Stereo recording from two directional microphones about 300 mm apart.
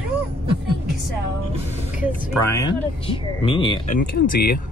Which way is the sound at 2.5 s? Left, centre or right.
Centre.